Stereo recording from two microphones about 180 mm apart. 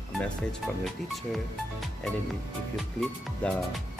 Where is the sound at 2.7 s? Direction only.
Centre (ahead or behind).